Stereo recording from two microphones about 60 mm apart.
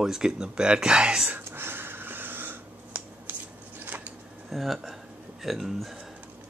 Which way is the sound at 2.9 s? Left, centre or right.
Right.